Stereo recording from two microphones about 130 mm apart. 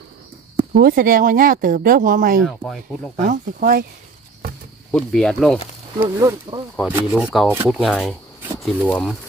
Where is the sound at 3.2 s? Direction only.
80° right.